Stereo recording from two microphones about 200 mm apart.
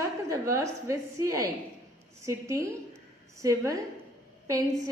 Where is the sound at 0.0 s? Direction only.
15° right (ahead or behind).